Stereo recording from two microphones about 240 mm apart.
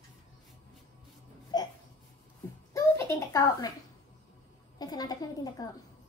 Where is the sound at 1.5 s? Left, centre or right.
Centre.